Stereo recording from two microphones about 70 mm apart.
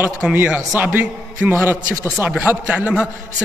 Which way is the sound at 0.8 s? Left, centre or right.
Right.